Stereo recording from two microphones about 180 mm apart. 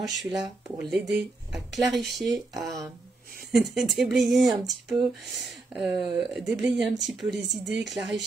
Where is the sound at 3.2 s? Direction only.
55° right (ahead or behind).